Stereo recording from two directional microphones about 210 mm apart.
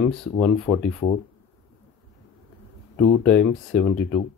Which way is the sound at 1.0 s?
25° left (ahead or behind).